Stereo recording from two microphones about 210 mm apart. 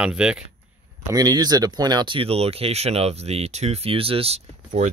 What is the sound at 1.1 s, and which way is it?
Speech, 20° right (ahead or behind).